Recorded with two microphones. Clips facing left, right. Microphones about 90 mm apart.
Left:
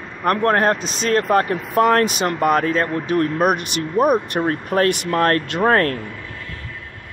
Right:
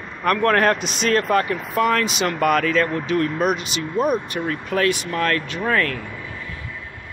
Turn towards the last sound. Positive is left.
turn(degrees=45)  # may be behind; listen again after turning